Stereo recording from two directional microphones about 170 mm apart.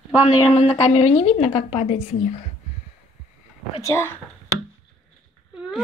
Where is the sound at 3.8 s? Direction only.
15° left (ahead or behind).